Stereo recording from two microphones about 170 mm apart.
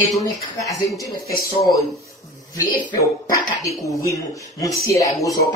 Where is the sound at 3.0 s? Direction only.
20° left (ahead or behind).